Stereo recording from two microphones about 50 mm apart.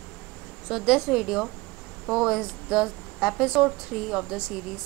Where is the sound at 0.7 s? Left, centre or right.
Centre.